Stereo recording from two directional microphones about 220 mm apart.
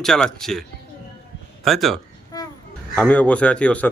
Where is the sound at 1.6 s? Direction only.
Centre (ahead or behind).